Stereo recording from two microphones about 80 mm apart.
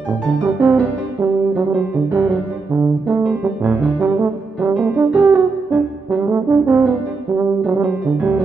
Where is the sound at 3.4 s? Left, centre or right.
Right.